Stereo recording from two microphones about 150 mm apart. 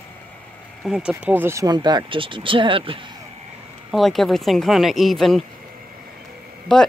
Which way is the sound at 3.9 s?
Centre (ahead or behind).